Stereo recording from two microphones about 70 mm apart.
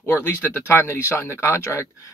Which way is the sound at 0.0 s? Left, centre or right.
Left.